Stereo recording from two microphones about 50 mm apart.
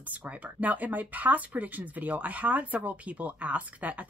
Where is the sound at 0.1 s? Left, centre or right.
Right.